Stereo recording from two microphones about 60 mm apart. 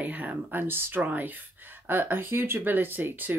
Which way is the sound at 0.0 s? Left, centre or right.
Right.